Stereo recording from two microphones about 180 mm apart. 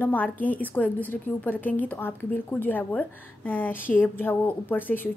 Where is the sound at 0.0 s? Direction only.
10° left (ahead or behind).